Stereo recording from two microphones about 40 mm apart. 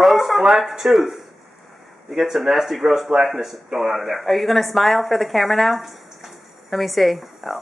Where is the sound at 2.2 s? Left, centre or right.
Centre.